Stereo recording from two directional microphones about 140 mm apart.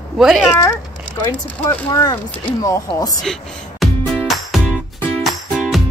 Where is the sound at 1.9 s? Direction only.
30° left (ahead or behind).